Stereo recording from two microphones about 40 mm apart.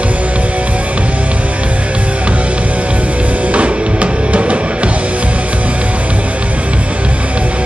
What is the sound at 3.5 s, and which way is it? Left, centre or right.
Music, right.